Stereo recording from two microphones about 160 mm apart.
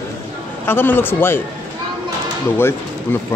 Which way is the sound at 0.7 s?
15° left (ahead or behind).